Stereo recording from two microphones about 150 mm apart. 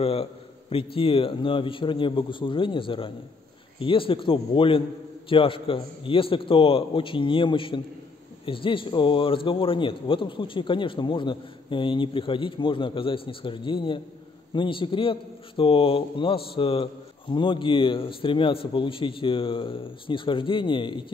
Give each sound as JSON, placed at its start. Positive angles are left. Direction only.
{"t": 0.0, "sound": "a man's voice", "side_deg": 40}